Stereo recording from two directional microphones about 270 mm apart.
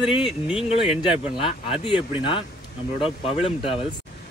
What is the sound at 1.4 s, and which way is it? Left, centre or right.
Speech, left.